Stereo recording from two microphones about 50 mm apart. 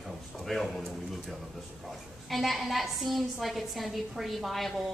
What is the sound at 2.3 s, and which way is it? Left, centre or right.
A woman's voice, centre.